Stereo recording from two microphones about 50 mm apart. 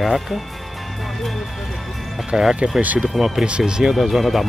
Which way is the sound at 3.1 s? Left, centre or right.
Centre.